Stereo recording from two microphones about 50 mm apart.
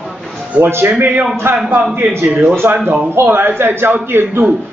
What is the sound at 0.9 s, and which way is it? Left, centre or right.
Speech, right.